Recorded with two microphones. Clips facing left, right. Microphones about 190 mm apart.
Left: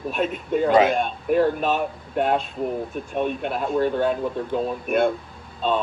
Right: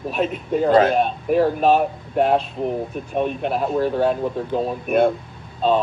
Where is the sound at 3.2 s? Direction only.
5° right (ahead or behind).